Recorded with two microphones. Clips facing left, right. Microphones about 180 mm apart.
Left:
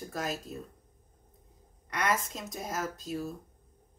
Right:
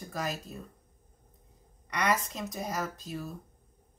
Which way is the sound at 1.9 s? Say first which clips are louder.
Right 1 dB; centre (ahead or behind).